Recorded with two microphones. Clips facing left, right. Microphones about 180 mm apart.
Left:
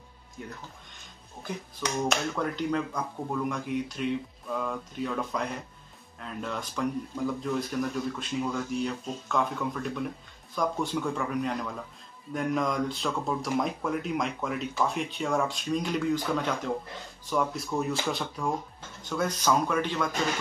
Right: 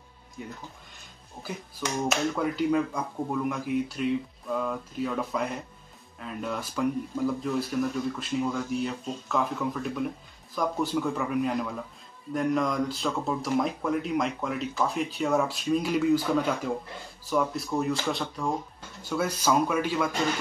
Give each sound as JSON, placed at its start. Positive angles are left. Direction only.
{"t": 1.4, "sound": "speech", "side_deg": -5}